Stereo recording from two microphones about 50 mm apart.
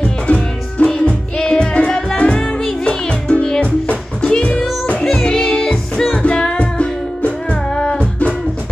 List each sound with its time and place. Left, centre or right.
0.0 s music: left